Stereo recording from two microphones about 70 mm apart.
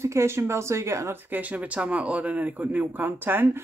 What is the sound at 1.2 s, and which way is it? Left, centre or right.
Speech, right.